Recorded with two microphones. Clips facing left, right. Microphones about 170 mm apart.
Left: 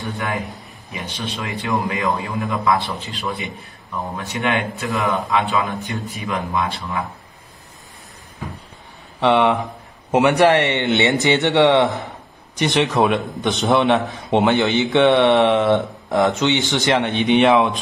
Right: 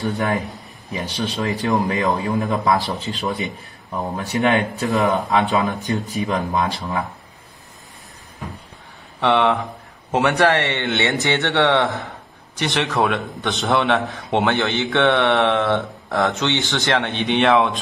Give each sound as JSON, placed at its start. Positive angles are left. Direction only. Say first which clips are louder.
{"t": 0.0, "sound": "a man's voice", "louder": "right 4 dB", "side_deg": -40}
{"t": 9.2, "sound": "speech", "louder": "left 2 dB", "side_deg": 20}